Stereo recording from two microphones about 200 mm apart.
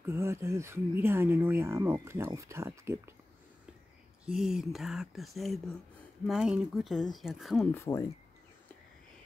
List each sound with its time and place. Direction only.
0.0 s speech: 15° right (ahead or behind)
4.3 s speech: 5° right (ahead or behind)
7.7 s speech: 15° left (ahead or behind)